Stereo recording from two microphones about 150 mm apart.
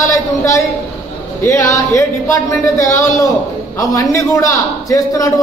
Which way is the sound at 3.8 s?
25° left (ahead or behind).